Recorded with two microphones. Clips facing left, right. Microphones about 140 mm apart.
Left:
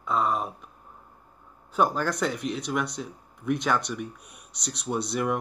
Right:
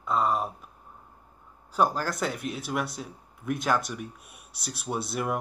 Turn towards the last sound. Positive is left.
turn(degrees=-5)  # may be behind; listen again after turning